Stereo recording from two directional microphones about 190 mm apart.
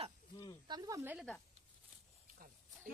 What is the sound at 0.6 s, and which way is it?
Speech, 20° right (ahead or behind).